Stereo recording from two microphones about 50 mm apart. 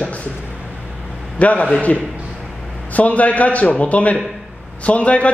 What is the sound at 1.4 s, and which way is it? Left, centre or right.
A man's voice, left.